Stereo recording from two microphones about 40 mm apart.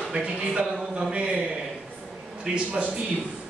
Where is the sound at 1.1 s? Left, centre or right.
Right.